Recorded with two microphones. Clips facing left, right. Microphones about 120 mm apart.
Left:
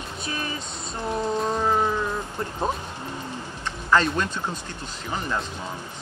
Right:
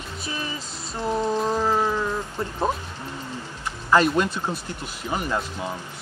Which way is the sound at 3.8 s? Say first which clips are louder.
Right 3 dB; 15° right (ahead or behind).